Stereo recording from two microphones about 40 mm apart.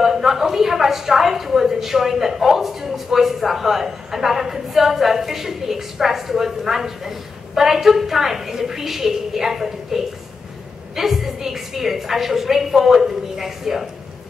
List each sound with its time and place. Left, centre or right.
0.0 s a woman's voice: centre